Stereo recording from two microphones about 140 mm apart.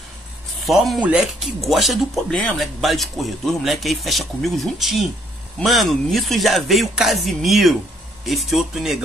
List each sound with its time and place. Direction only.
0.7 s speech: centre (ahead or behind)